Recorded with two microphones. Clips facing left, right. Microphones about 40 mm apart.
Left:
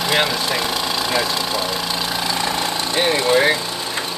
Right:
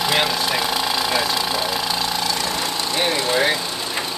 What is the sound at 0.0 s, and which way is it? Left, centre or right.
Engine, centre.